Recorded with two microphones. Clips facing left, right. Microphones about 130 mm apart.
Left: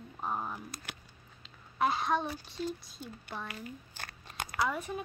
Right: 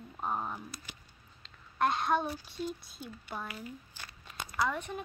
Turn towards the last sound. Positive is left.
turn(degrees=5)  # may be behind; listen again after turning